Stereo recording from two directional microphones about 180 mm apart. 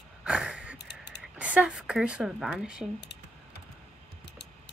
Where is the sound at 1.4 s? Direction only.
5° right (ahead or behind).